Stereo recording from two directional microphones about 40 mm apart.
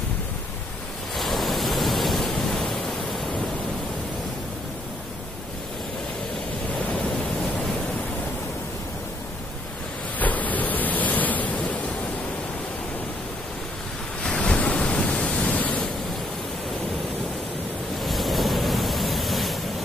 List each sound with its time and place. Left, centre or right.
1.1 s waves: centre
10.1 s a sound: left
14.4 s pink noise: left
15.5 s pink noise: left
18.0 s waves: centre